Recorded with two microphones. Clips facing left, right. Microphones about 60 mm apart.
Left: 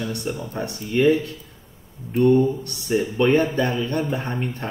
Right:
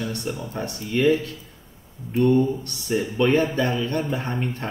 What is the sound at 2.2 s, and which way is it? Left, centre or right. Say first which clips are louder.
Speech: left 2 dB; centre.